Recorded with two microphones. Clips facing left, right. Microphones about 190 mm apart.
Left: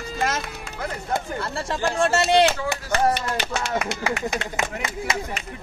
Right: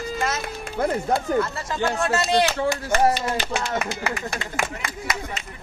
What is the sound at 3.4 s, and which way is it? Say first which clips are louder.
Mantra: even; centre (ahead or behind).